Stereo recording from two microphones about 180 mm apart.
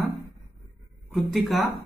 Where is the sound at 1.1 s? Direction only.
Centre (ahead or behind).